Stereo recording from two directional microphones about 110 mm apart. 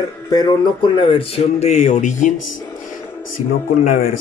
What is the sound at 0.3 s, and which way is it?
Speech, 40° left (ahead or behind).